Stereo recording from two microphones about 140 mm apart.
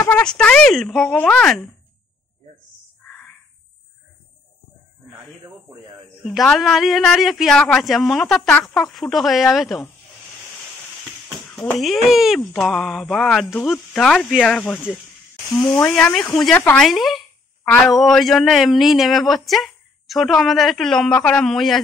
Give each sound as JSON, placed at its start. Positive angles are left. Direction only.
{"t": 0.0, "sound": "speech", "side_deg": 10}
{"t": 6.2, "sound": "speech", "side_deg": 0}
{"t": 11.8, "sound": "speech", "side_deg": 0}
{"t": 15.6, "sound": "speech", "side_deg": 20}
{"t": 15.9, "sound": "speech", "side_deg": 5}
{"t": 16.8, "sound": "speech", "side_deg": 0}